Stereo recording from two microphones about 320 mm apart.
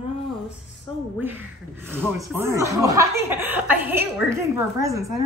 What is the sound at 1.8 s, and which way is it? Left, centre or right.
Speech, centre.